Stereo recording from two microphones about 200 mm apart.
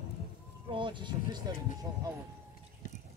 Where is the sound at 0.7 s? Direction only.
25° right (ahead or behind).